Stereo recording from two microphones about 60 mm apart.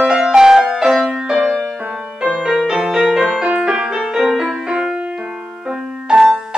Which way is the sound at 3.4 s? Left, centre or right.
Centre.